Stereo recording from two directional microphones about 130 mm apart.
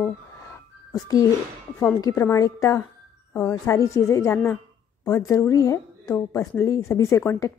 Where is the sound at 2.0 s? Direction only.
25° left (ahead or behind).